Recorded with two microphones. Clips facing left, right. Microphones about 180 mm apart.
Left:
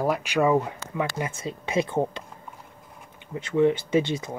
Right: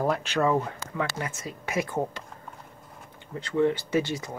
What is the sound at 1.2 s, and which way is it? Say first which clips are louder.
Speech: left 4 dB; 25° left (ahead or behind).